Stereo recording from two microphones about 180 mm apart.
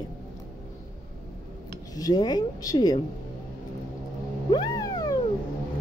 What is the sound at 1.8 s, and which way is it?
Speech, 20° left (ahead or behind).